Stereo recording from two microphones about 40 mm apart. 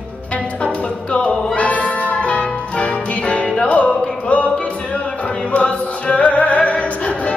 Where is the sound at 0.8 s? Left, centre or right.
Left.